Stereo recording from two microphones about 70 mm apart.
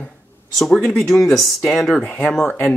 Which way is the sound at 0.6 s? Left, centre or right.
Centre.